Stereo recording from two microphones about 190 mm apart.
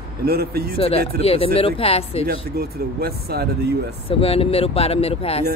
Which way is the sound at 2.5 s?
55° right (ahead or behind).